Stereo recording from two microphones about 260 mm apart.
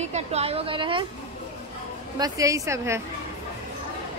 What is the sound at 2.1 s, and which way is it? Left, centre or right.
Speech, centre.